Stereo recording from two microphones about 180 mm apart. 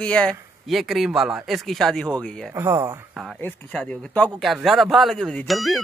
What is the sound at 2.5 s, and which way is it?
Speech, 15° right (ahead or behind).